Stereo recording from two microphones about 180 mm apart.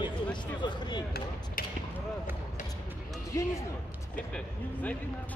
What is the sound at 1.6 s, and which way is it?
Mechanisms, 50° left (ahead or behind).